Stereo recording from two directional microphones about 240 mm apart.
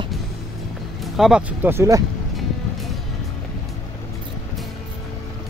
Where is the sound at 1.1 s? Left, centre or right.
Centre.